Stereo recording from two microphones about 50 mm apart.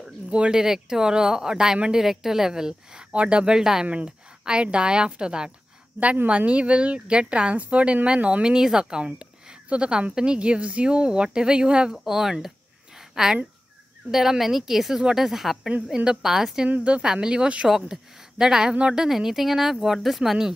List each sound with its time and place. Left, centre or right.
0.0 s speech: centre
3.8 s a woman's voice: right
9.0 s a woman's voice: right
11.9 s speech: centre
15.9 s speech: centre
16.6 s a woman's voice: right
17.6 s speech: centre